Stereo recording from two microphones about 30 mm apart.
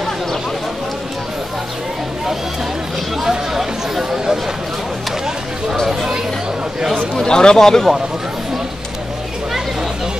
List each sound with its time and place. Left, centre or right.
3.3 s chatter: centre
7.2 s a man's voice: left